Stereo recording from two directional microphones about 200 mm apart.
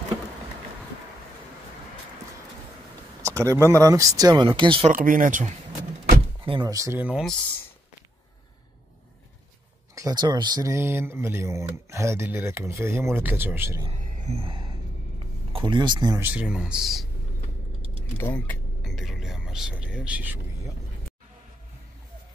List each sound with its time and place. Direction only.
3.3 s speech: 15° right (ahead or behind)
4.9 s speech: 40° right (ahead or behind)
6.4 s speech: 25° right (ahead or behind); by 7.3 s 5° right (ahead or behind)
9.9 s speech: 20° right (ahead or behind)
14.1 s a sound: 35° right (ahead or behind)
15.5 s speech: 25° right (ahead or behind); by 17.0 s centre (ahead or behind)
18.1 s speech: 10° left (ahead or behind); by 20.3 s 5° right (ahead or behind)